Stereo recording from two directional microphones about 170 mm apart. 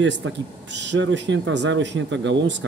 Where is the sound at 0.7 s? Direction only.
90° right.